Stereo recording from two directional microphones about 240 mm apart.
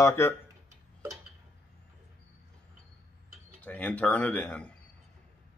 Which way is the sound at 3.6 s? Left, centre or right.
Centre.